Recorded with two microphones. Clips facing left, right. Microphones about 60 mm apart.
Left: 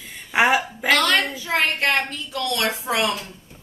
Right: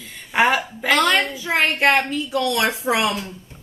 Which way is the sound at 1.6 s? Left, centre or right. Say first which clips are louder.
Right 6 dB; centre.